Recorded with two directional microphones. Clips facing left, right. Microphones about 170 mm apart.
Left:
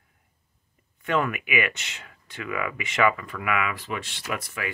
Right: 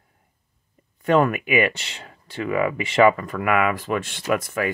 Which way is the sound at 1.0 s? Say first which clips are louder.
Right 7 dB; 40° right (ahead or behind).